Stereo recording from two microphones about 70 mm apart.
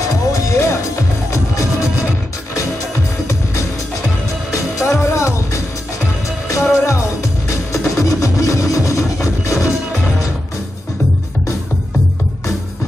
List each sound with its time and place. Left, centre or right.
0.3 s music: left
4.6 s music: left